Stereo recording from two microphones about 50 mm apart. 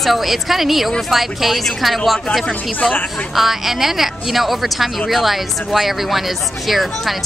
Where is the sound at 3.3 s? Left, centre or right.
Centre.